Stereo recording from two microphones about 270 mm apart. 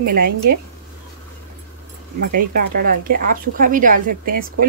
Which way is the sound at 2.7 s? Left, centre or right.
Right.